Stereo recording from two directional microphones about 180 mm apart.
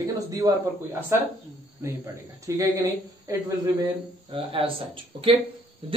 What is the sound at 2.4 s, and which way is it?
Speech, 20° right (ahead or behind).